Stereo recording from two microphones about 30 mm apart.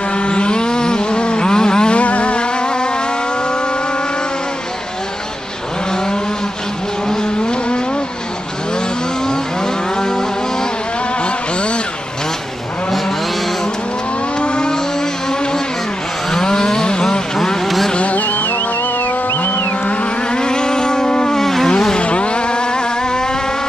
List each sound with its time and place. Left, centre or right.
0.1 s vehicle: left
2.0 s music: left
9.9 s vehicle: centre
11.2 s a sound: left
14.4 s vehicle: left
16.3 s a sound: left
18.1 s music: left
20.2 s vehicle: left
21.4 s insect: centre
21.6 s a sound: left
22.0 s vehicle: left